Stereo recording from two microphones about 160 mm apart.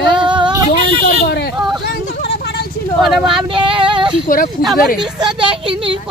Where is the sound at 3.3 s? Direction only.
30° right (ahead or behind).